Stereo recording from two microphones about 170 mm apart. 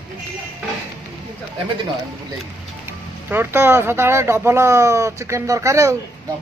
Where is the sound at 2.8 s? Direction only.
15° right (ahead or behind).